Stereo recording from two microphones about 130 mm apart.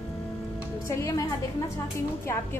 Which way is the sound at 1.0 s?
25° left (ahead or behind).